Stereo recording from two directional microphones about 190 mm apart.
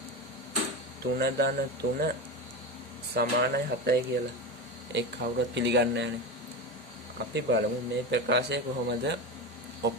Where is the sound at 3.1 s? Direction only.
55° right (ahead or behind).